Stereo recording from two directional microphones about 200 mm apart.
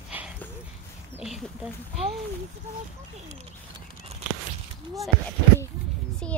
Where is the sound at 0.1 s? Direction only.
10° right (ahead or behind).